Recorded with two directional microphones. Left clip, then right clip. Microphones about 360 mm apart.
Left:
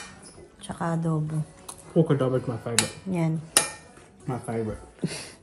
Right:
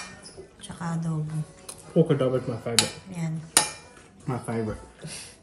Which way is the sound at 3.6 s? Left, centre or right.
Centre.